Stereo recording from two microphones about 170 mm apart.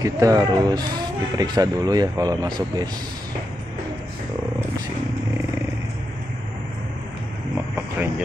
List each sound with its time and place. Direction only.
0.0 s speech: 20° right (ahead or behind)